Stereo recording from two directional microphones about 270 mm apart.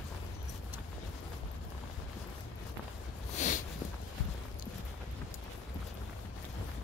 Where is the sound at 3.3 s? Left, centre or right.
Left.